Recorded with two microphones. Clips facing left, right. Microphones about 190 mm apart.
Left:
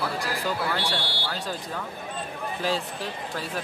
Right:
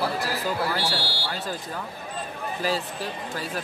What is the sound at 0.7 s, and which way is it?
Speech, 5° right (ahead or behind).